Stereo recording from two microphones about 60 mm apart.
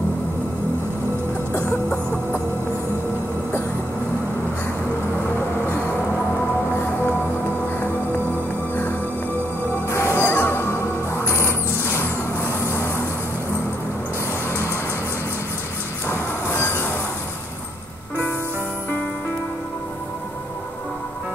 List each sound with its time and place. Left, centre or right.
5.7 s music: left
9.8 s music: left
11.8 s vehicle: left
12.7 s music: left
16.4 s train: left